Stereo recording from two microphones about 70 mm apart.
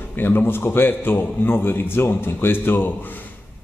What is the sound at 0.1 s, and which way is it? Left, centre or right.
A man's voice, left.